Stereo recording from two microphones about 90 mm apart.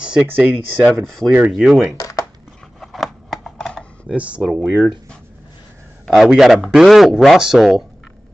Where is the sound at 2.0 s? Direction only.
40° left (ahead or behind).